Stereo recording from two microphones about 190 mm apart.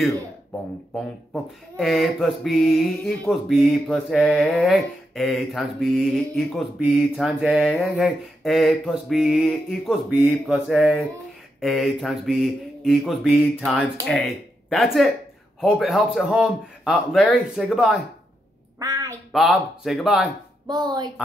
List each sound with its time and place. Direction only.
0.9 s speech: centre (ahead or behind)
18.8 s a sound: 15° right (ahead or behind)
19.3 s speech: centre (ahead or behind)
20.6 s speech: 20° right (ahead or behind)